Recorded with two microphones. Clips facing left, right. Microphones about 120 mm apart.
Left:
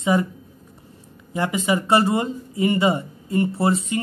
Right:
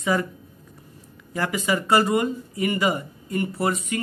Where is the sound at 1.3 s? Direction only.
20° left (ahead or behind).